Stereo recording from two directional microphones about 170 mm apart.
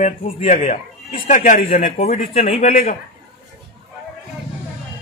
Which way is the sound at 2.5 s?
45° left (ahead or behind).